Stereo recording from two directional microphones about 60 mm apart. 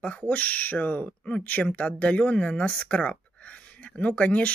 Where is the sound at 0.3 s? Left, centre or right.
Left.